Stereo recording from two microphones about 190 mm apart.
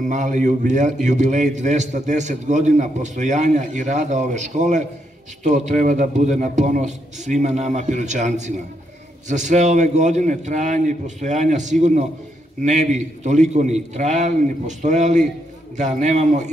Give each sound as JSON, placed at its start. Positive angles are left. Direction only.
{"t": 0.0, "sound": "a man's voice", "side_deg": -40}